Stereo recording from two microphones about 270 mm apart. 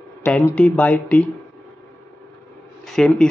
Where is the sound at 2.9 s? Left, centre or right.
Centre.